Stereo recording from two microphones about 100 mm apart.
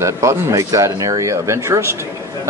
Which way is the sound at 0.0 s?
30° right (ahead or behind).